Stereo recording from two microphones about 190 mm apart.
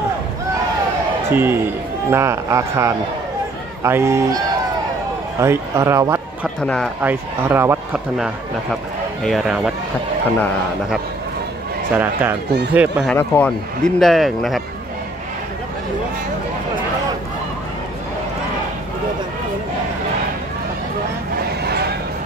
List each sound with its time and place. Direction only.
1.3 s speech: 10° right (ahead or behind)
5.4 s speech: 15° right (ahead or behind)
6.6 s speech: 5° left (ahead or behind)
7.0 s speech: 10° right (ahead or behind)
9.2 s speech: centre (ahead or behind)
12.0 s speech: 10° right (ahead or behind)
12.4 s speech: 60° right (ahead or behind)
12.7 s speech: 5° right (ahead or behind)
13.1 s speech: 5° left (ahead or behind)